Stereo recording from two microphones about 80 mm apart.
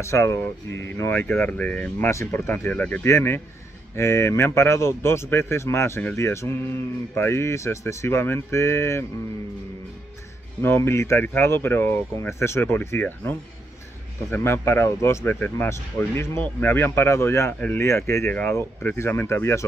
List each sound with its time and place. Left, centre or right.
0.0 s a man's voice: left
2.0 s speech: left
3.1 s a man's voice: left
10.6 s a man's voice: left